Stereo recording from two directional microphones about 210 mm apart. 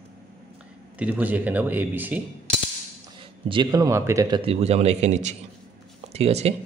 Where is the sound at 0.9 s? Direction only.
5° right (ahead or behind).